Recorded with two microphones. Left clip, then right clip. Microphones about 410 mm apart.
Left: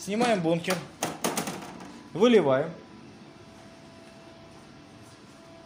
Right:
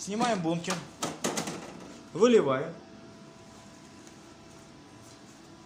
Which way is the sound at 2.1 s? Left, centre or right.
Right.